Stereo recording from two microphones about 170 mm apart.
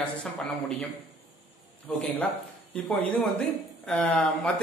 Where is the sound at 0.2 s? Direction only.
5° left (ahead or behind).